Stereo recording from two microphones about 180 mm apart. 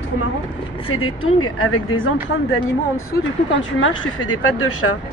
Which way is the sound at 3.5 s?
90° left.